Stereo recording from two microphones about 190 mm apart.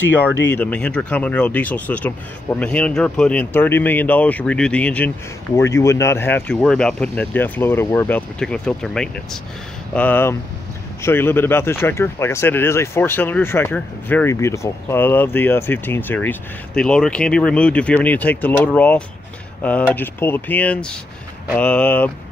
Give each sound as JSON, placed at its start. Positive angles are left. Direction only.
{"t": 0.5, "sound": "speech", "side_deg": 10}